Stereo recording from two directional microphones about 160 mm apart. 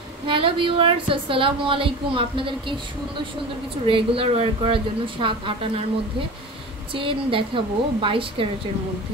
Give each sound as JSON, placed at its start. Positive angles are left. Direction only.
{"t": 0.3, "sound": "a woman's voice", "side_deg": -35}
{"t": 3.8, "sound": "a woman's voice", "side_deg": -35}
{"t": 6.9, "sound": "a woman's voice", "side_deg": -35}